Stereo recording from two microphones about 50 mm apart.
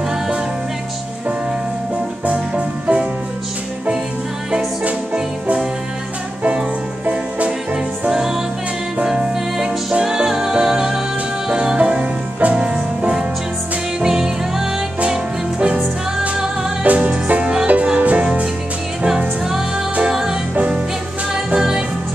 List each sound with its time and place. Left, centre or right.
2.2 s music: right
5.1 s music: centre
7.1 s music: right
16.8 s music: right
17.9 s music: right
19.0 s music: centre
20.5 s music: right
21.5 s music: centre